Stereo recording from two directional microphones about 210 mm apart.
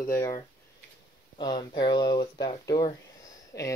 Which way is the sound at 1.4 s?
20° left (ahead or behind).